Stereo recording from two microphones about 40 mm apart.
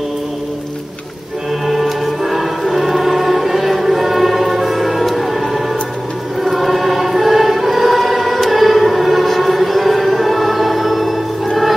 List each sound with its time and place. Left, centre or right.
1.7 s music: centre
6.4 s choir: centre